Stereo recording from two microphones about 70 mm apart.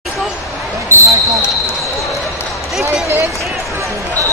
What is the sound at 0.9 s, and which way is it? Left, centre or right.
Basketball bounce, right.